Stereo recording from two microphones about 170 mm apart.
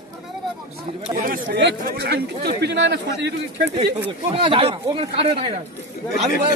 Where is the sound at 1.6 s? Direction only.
80° right.